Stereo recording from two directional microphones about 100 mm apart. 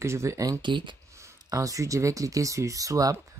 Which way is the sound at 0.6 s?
50° right (ahead or behind).